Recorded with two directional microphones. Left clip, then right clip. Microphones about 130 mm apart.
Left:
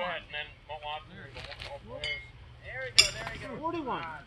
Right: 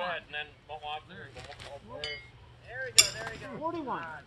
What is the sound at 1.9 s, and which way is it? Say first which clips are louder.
Speech: left 3 dB; 30° right (ahead or behind).